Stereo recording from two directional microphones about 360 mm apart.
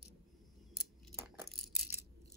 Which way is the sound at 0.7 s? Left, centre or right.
Centre.